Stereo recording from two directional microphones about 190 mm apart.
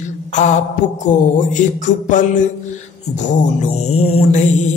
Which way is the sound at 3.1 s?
35° left (ahead or behind).